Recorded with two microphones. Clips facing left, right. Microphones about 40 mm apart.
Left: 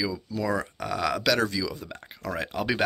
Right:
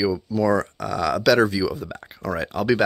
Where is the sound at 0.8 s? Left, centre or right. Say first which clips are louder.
Right 4 dB; centre.